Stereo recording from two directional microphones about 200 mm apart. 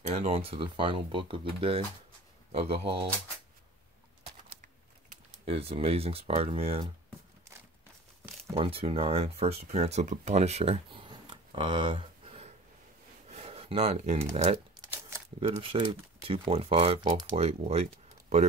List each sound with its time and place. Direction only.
0.0 s speech: 30° right (ahead or behind)
5.1 s speech: 30° right (ahead or behind)
8.5 s speech: 30° right (ahead or behind)
13.3 s a sound: 30° right (ahead or behind)
14.3 s speech: 35° right (ahead or behind)
14.9 s crumpling: 15° right (ahead or behind)
15.4 s speech: 30° right (ahead or behind)